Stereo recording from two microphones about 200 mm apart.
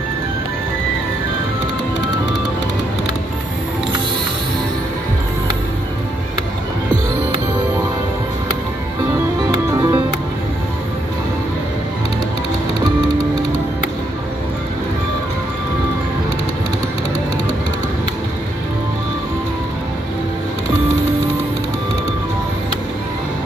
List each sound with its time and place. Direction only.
9.5 s music: 20° right (ahead or behind)